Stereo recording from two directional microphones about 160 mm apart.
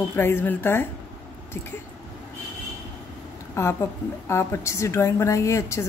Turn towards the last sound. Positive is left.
turn(degrees=20)  # may be behind; listen again after turning